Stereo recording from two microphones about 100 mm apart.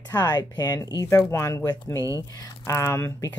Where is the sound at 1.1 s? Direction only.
25° left (ahead or behind).